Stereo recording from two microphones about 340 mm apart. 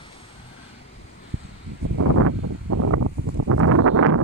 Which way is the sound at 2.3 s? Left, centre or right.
Right.